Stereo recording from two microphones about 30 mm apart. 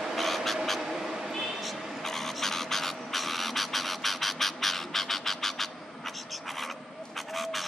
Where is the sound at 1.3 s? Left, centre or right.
Centre.